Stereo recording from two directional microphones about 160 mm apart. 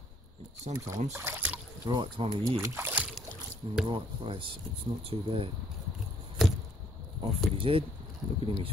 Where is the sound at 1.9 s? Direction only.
30° right (ahead or behind).